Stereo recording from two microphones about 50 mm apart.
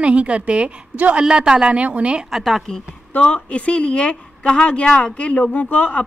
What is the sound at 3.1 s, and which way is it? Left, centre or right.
A woman's voice, left.